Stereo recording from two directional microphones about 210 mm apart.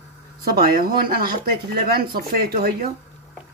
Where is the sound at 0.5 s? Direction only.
45° right (ahead or behind).